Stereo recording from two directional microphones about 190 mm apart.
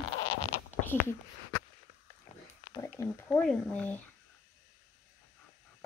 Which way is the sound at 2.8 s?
15° left (ahead or behind).